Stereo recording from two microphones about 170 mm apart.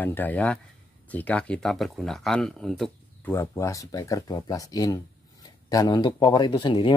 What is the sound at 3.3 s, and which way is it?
Speech, 15° left (ahead or behind).